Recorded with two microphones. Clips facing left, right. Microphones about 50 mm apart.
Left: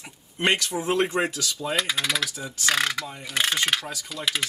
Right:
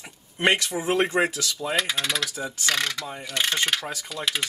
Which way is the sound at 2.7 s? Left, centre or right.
Centre.